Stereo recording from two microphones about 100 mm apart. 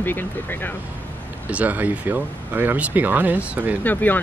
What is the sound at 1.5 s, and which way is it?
Speech, 15° right (ahead or behind).